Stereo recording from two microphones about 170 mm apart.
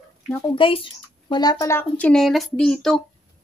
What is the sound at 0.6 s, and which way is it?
A child's voice, 30° left (ahead or behind).